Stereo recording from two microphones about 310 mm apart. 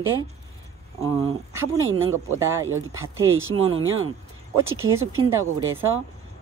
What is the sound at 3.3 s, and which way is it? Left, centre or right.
Speech, right.